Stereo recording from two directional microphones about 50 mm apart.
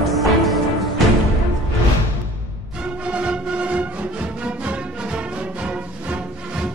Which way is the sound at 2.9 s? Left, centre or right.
Right.